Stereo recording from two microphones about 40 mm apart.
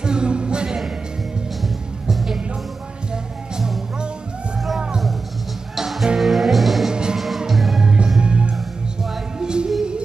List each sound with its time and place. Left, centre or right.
0.0 s music: right
1.6 s music: centre
5.8 s music: centre
6.9 s music: centre
7.2 s music: centre
7.8 s music: right